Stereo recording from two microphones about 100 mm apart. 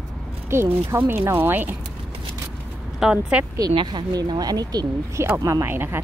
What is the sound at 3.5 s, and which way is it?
Speech, 45° right (ahead or behind).